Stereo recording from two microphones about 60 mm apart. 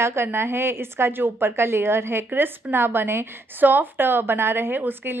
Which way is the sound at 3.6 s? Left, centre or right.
Right.